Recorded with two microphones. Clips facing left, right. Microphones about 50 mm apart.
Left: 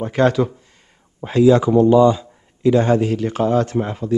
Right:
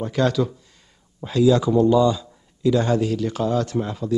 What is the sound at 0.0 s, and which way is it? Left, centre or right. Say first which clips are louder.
A man's voice: left 4 dB; left.